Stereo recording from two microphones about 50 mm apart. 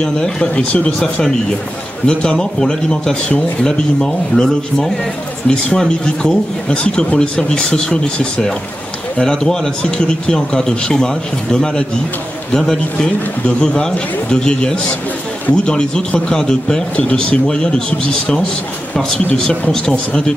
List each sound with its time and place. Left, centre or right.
0.0 s speech: centre
2.0 s speech: centre
14.3 s speech: centre
19.7 s speech: centre